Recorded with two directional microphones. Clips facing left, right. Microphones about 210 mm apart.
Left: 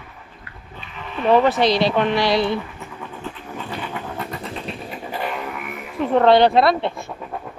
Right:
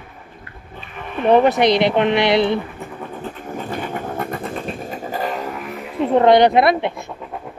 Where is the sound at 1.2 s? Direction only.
20° right (ahead or behind).